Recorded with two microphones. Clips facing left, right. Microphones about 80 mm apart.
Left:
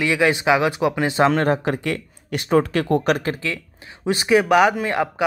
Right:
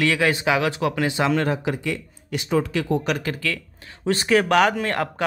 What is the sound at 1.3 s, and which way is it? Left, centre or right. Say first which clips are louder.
Speech: left 3 dB; left.